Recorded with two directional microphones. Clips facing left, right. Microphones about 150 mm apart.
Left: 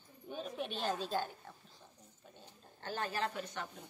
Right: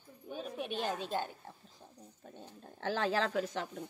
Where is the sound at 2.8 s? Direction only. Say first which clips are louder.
Right 6 dB; 90° right.